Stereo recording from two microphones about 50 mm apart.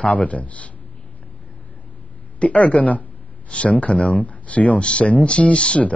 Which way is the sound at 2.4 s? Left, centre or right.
Left.